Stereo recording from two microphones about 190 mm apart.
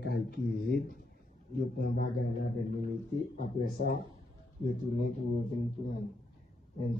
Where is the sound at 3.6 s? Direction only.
50° left (ahead or behind).